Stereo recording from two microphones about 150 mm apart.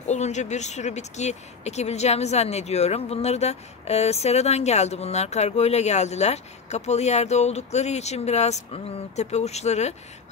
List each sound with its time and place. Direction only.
0.0 s speech: 50° left (ahead or behind)